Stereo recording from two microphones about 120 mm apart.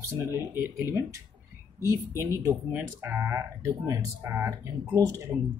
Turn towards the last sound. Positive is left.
turn(degrees=-25)  # may be behind; listen again after turning